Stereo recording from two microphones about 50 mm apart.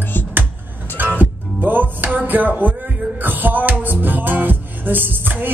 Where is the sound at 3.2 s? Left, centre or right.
Right.